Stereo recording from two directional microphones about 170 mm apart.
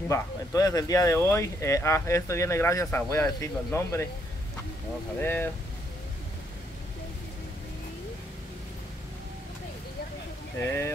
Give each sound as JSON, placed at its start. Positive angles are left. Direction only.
{"t": 0.1, "sound": "speech", "side_deg": 20}
{"t": 5.2, "sound": "speech", "side_deg": 10}
{"t": 10.6, "sound": "speech", "side_deg": 15}